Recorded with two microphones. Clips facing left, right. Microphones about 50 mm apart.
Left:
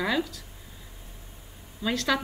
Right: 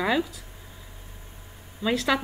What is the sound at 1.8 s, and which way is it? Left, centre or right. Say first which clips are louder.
Speech: right 2 dB; centre.